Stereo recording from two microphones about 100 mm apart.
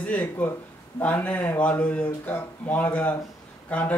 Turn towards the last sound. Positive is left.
turn(degrees=15)  # may be behind; listen again after turning